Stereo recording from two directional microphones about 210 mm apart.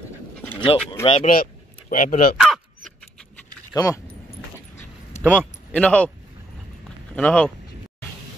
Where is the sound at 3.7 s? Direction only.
15° left (ahead or behind).